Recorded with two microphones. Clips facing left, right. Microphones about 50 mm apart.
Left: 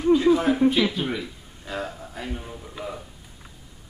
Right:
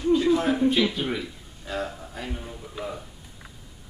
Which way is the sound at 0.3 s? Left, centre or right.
Centre.